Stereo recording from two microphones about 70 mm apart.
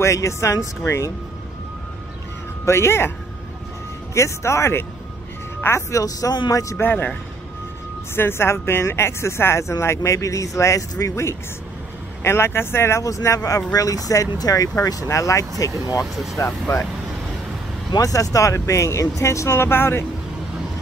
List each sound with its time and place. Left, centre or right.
0.0 s speech: left
2.6 s speech: left
4.1 s speech: left
6.8 s speech: left
8.2 s speech: left
16.0 s speech: centre
16.3 s speech: left
17.9 s speech: left